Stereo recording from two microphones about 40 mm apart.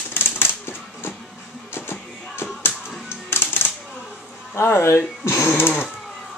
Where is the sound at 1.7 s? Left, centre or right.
Left.